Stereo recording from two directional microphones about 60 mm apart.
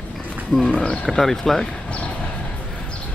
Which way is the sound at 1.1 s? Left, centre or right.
Centre.